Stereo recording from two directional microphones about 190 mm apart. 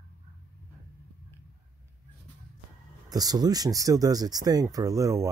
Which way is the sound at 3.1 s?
20° right (ahead or behind).